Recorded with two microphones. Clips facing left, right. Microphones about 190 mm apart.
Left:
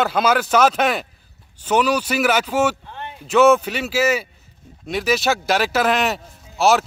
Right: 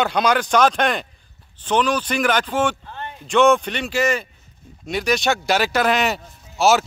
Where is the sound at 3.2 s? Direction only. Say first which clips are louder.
Left 2 dB; 5° left (ahead or behind).